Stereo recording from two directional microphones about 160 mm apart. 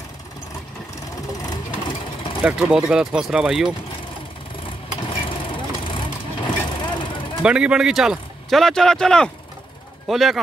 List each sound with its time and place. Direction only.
1.4 s vehicle: 25° left (ahead or behind)
2.4 s speech: 5° right (ahead or behind)
5.1 s vehicle: 30° left (ahead or behind)
7.4 s speech: 5° right (ahead or behind)